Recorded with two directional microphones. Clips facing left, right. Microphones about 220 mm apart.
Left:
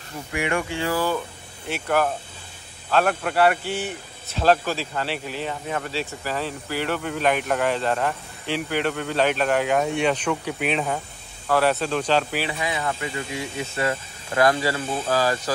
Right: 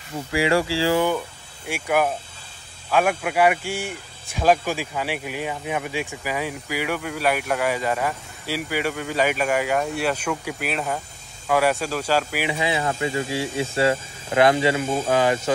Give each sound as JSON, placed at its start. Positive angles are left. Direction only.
{"t": 0.4, "sound": "speech", "side_deg": -30}
{"t": 1.7, "sound": "speech", "side_deg": -10}
{"t": 12.5, "sound": "speech", "side_deg": -25}